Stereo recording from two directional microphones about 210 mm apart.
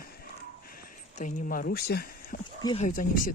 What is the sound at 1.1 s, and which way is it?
Speech, 40° left (ahead or behind).